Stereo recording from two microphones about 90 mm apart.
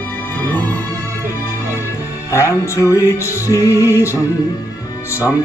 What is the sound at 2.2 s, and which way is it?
Music, 35° left (ahead or behind).